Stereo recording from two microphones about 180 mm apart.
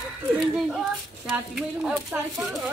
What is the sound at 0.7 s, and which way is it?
Speech, 5° right (ahead or behind).